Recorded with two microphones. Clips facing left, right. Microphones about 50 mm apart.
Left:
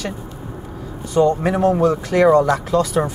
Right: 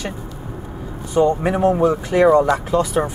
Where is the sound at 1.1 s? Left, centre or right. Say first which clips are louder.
Even; centre.